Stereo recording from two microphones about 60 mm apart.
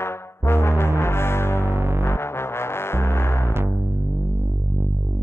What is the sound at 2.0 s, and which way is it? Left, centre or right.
Music, left.